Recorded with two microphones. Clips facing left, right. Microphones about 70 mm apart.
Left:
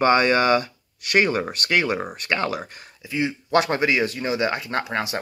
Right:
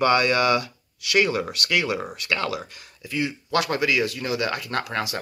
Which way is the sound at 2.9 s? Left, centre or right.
Left.